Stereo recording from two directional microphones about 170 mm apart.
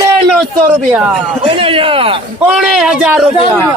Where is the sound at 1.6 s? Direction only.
30° right (ahead or behind).